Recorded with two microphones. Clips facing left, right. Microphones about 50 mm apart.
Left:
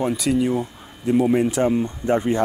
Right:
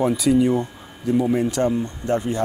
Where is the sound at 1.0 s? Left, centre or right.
Left.